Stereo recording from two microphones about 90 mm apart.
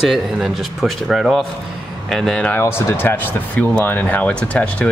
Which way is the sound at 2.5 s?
25° left (ahead or behind).